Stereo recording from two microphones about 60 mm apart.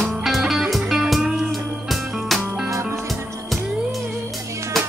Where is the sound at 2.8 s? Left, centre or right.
Right.